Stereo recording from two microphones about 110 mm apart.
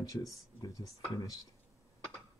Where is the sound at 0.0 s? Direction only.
30° left (ahead or behind).